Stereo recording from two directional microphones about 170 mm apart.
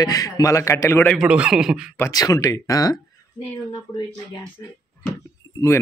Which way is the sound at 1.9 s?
15° left (ahead or behind).